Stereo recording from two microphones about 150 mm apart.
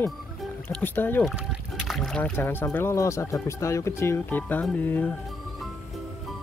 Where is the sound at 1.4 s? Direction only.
Centre (ahead or behind).